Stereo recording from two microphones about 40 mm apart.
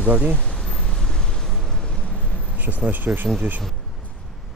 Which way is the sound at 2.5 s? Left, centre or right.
Right.